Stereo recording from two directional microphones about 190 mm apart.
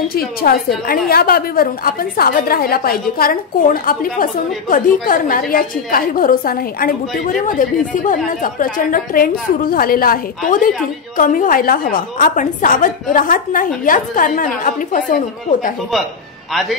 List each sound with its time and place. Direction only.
0.1 s a woman's voice: 50° left (ahead or behind)